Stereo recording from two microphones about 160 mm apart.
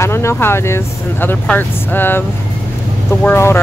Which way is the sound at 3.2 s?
15° left (ahead or behind).